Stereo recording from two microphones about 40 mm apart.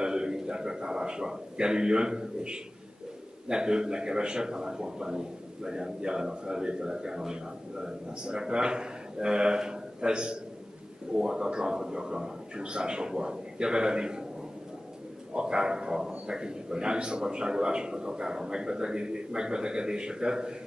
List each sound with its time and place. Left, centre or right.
0.0 s a man's voice: centre
15.3 s a man's voice: right